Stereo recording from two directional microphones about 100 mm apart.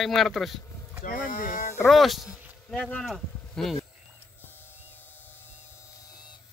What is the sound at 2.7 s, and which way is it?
Speech, 10° left (ahead or behind).